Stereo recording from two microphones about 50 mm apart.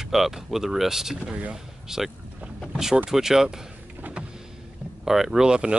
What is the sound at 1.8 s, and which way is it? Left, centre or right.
Speech, centre.